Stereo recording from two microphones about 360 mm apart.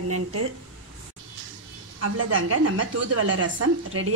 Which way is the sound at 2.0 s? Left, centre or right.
Right.